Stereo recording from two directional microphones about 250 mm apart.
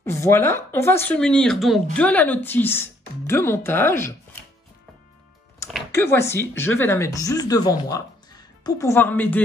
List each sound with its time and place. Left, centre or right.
0.0 s speech: centre
5.9 s speech: centre